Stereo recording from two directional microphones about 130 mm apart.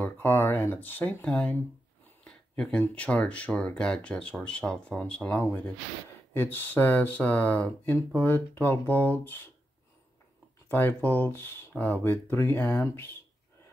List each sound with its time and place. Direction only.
0.0 s speech: 15° left (ahead or behind)
10.7 s speech: 15° left (ahead or behind)